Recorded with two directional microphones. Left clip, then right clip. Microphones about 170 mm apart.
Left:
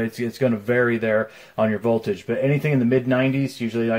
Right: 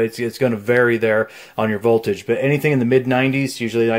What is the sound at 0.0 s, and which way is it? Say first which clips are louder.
Speech: right 4 dB; 30° right (ahead or behind).